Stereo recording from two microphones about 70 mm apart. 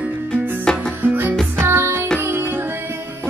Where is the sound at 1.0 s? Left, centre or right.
Right.